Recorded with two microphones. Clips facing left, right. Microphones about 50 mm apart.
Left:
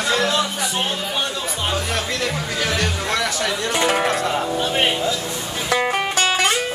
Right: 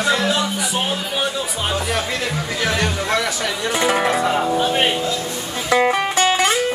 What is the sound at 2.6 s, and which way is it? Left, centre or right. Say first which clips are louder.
Speech: right 2 dB; centre.